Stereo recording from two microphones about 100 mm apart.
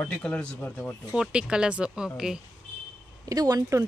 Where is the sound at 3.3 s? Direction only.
40° right (ahead or behind).